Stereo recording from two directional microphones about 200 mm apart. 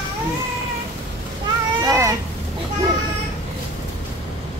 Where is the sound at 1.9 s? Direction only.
15° right (ahead or behind).